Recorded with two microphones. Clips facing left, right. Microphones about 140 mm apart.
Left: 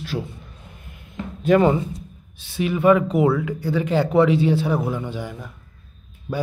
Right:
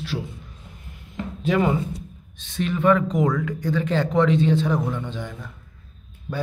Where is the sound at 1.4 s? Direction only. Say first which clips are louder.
Left 5 dB; 50° left (ahead or behind).